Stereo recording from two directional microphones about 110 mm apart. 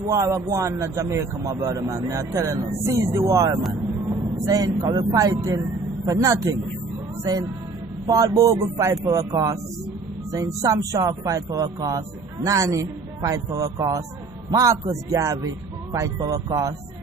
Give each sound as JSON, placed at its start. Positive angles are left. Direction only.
{"t": 0.1, "sound": "a man's voice", "side_deg": -30}
{"t": 4.1, "sound": "vehicle", "side_deg": -30}
{"t": 4.7, "sound": "a man's voice", "side_deg": -50}
{"t": 5.1, "sound": "speech", "side_deg": -35}
{"t": 8.1, "sound": "a man's voice", "side_deg": -30}